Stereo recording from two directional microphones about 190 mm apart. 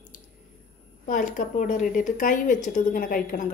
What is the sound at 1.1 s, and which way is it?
Speech, 40° left (ahead or behind).